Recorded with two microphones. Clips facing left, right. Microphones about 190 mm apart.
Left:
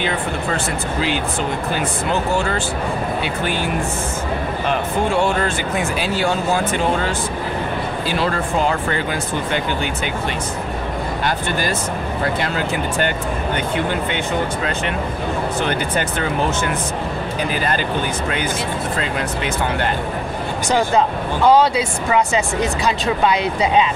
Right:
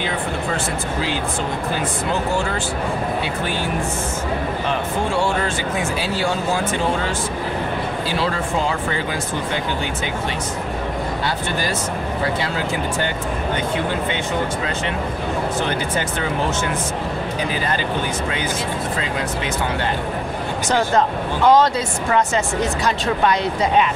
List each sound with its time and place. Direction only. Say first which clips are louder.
5.8 s speech: left 3 dB; 55° left (ahead or behind)
8.2 s speech: left 3 dB; 55° left (ahead or behind)
12.4 s speech: left 1 dB; 60° left (ahead or behind)
16.0 s speech: left 2 dB; 60° left (ahead or behind)
20.6 s speech: left 1 dB; 10° left (ahead or behind)